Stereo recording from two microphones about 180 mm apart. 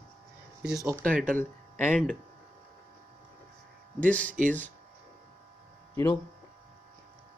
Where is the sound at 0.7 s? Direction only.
15° right (ahead or behind).